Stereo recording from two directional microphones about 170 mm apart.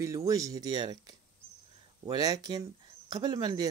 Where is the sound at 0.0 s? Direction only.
20° right (ahead or behind).